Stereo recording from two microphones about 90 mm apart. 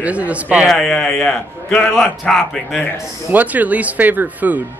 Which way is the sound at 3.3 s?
20° right (ahead or behind).